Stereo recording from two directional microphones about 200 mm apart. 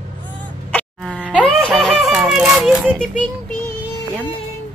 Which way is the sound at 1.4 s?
Centre (ahead or behind).